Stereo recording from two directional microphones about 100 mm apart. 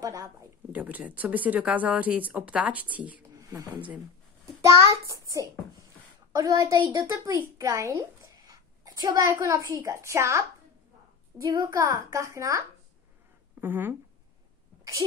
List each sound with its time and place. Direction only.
0.0 s speech: 35° right (ahead or behind)
0.7 s speech: 15° right (ahead or behind)
3.3 s a woman's voice: 35° right (ahead or behind)
11.4 s a woman's voice: 40° right (ahead or behind)
13.6 s speech: 20° right (ahead or behind)